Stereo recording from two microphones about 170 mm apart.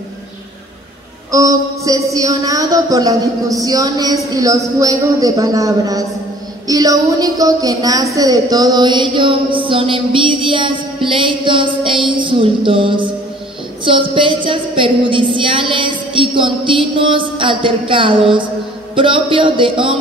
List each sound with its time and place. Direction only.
1.3 s speech: 20° right (ahead or behind)